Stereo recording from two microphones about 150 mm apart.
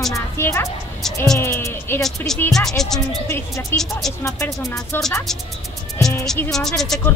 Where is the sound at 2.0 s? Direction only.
5° left (ahead or behind).